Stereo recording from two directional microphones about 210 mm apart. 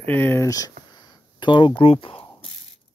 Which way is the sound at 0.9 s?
20° left (ahead or behind).